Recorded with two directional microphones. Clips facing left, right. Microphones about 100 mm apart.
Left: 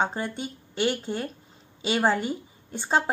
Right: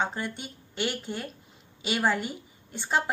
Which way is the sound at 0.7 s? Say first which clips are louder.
Left 5 dB; 25° left (ahead or behind).